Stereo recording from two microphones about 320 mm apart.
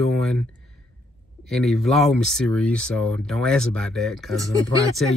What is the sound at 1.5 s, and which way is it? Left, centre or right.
A woman's voice, centre.